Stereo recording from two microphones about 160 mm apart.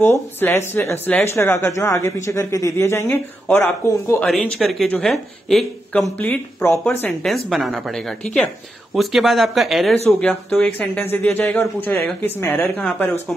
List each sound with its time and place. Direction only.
0.0 s speech: 15° left (ahead or behind)
4.6 s speech: centre (ahead or behind)
6.1 s speech: 10° left (ahead or behind)